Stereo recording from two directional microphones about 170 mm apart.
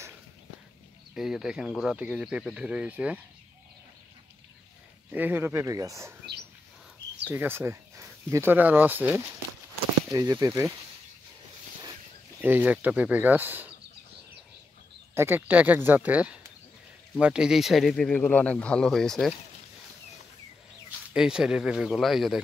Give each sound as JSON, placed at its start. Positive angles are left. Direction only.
{"t": 1.1, "sound": "speech", "side_deg": -5}
{"t": 5.1, "sound": "speech", "side_deg": -10}
{"t": 7.2, "sound": "speech", "side_deg": -10}
{"t": 12.4, "sound": "speech", "side_deg": -10}
{"t": 15.1, "sound": "speech", "side_deg": -15}
{"t": 21.1, "sound": "speech", "side_deg": -5}